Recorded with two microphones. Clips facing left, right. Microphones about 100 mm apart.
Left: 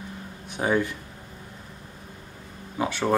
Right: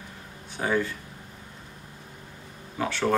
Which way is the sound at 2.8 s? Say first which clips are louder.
Left 1 dB; 15° left (ahead or behind).